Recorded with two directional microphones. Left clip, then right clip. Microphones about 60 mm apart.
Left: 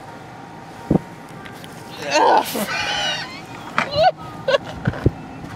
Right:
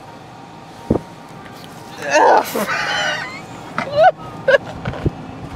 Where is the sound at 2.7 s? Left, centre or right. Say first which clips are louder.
Right 2 dB; right.